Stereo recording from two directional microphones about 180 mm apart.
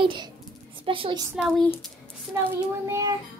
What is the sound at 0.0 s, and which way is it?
A child's voice, 25° right (ahead or behind).